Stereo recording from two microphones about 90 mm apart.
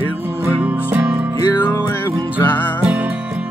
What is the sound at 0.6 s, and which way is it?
Music, 15° right (ahead or behind).